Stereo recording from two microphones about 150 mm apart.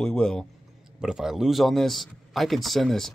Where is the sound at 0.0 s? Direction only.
5° left (ahead or behind).